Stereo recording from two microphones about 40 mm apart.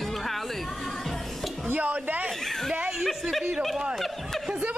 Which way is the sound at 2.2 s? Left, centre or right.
Centre.